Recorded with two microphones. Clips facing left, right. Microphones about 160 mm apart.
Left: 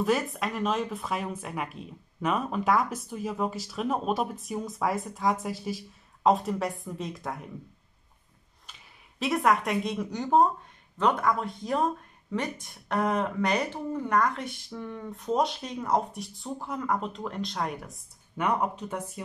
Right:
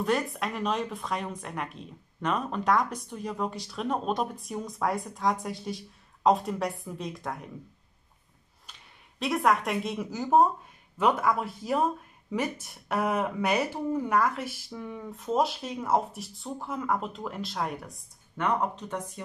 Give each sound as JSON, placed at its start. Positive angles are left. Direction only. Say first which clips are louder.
{"t": 0.0, "sound": "speech", "louder": "left 1 dB", "side_deg": 0}
{"t": 8.6, "sound": "speech", "louder": "left 1 dB", "side_deg": 0}